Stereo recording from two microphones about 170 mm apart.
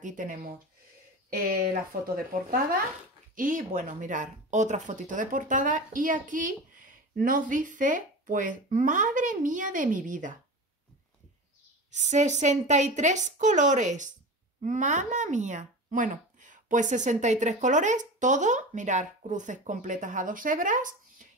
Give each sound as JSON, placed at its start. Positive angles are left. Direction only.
{"t": 0.0, "sound": "speech", "side_deg": -50}
{"t": 1.6, "sound": "speech", "side_deg": -60}
{"t": 11.9, "sound": "speech", "side_deg": -45}